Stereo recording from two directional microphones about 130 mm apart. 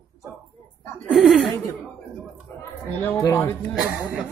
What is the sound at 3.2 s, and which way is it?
Speech, 20° left (ahead or behind).